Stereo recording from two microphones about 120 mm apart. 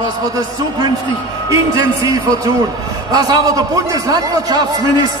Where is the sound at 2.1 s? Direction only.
30° right (ahead or behind).